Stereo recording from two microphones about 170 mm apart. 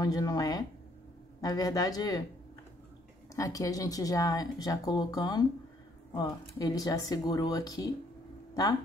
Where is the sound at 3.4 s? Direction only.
20° left (ahead or behind).